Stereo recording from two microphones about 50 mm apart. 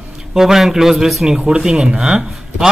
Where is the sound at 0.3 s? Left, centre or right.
Centre.